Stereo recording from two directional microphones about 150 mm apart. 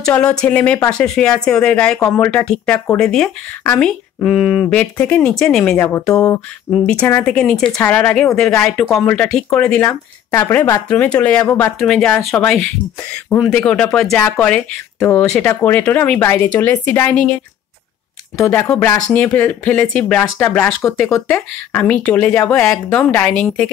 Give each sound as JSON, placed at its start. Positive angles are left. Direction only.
{"t": 0.0, "sound": "speech", "side_deg": 5}
{"t": 4.7, "sound": "speech", "side_deg": 10}
{"t": 6.0, "sound": "speech", "side_deg": 20}
{"t": 6.8, "sound": "speech", "side_deg": 10}
{"t": 18.4, "sound": "speech", "side_deg": 15}
{"t": 19.1, "sound": "speech", "side_deg": 10}